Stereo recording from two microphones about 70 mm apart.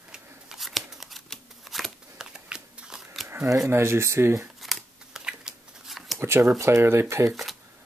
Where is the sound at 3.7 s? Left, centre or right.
Right.